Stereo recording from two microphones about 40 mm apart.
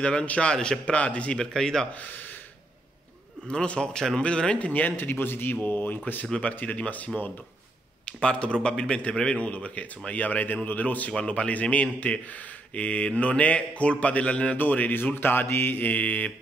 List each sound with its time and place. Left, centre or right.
0.0 s a man's voice: left
1.4 s speech: centre
3.4 s a man's voice: left
4.6 s speech: left
4.9 s mantra: left
5.6 s speech: left
8.0 s a man's voice: left
9.4 s speech: left
14.6 s speech: left
15.0 s mantra: left
15.9 s speech: left